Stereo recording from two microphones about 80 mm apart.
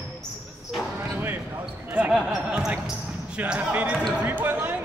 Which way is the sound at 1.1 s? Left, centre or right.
Right.